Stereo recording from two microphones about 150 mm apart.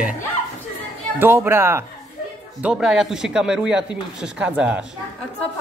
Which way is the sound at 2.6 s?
5° right (ahead or behind).